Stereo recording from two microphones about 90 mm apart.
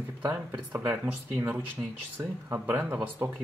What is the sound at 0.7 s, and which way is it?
Speech, 15° right (ahead or behind).